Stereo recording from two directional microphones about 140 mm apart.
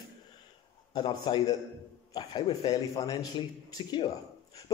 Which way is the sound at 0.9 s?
30° left (ahead or behind).